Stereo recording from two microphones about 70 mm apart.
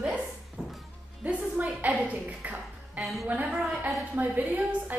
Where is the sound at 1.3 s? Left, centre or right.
Centre.